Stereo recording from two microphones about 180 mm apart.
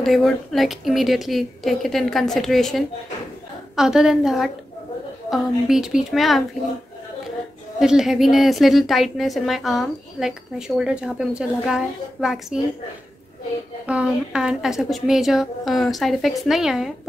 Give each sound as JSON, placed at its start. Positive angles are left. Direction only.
{"t": 0.0, "sound": "a woman's voice", "side_deg": 0}
{"t": 7.8, "sound": "a woman's voice", "side_deg": 0}
{"t": 13.8, "sound": "a woman's voice", "side_deg": -5}